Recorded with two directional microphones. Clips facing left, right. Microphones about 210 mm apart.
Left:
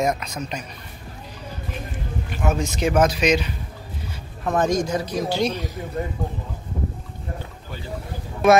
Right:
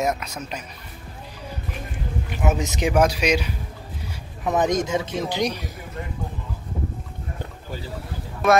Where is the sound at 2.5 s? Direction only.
15° right (ahead or behind).